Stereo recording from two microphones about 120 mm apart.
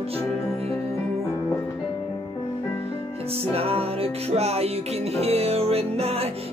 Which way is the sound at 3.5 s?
55° right (ahead or behind).